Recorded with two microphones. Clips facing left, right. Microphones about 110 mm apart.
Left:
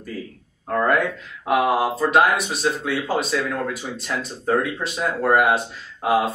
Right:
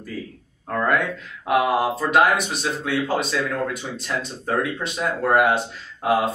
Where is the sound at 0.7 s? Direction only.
5° left (ahead or behind).